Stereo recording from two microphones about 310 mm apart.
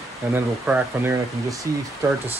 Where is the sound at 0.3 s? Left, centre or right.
Centre.